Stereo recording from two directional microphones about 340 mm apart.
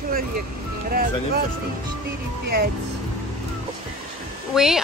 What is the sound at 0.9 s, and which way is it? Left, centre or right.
Speech, right.